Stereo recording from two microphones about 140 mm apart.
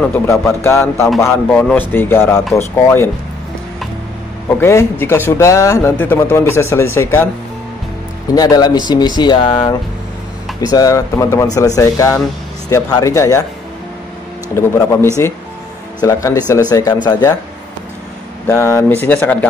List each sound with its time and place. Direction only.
0.1 s speech: 15° left (ahead or behind)
4.6 s speech: 20° left (ahead or behind)
8.4 s speech: 30° left (ahead or behind)
14.5 s speech: 20° left (ahead or behind)
18.5 s speech: 20° left (ahead or behind)